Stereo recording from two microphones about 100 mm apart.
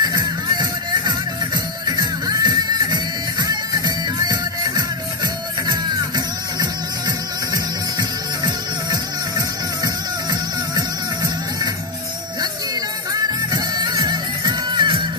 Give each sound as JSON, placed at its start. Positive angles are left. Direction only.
{"t": 0.0, "sound": "music", "side_deg": -40}
{"t": 13.1, "sound": "music", "side_deg": -40}